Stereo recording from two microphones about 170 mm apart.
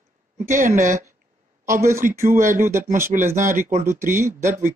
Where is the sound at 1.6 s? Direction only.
15° right (ahead or behind).